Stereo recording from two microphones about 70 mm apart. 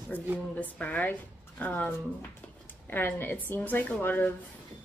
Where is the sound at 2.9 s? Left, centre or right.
Left.